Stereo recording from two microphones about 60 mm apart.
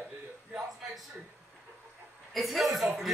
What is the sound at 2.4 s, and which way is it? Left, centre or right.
Speech, centre.